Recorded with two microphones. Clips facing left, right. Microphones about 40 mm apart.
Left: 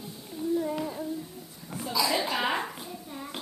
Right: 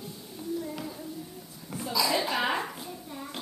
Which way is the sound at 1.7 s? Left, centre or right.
Centre.